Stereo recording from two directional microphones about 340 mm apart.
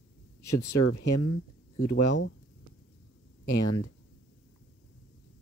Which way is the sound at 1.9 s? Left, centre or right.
Left.